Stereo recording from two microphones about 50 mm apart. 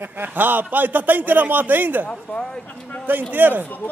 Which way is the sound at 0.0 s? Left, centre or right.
Right.